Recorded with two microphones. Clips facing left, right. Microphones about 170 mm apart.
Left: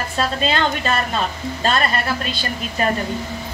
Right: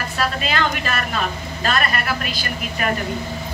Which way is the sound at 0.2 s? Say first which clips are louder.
Left 2 dB; 30° left (ahead or behind).